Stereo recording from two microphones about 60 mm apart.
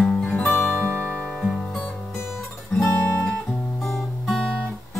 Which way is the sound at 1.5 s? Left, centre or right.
Centre.